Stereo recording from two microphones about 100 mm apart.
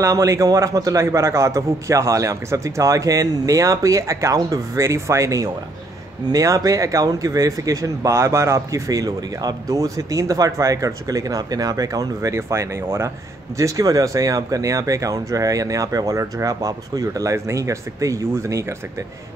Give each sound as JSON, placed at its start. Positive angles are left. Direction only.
{"t": 0.0, "sound": "speech", "side_deg": -35}